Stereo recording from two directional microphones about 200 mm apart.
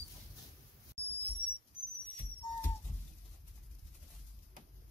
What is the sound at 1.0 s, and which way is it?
Whistle, 30° left (ahead or behind).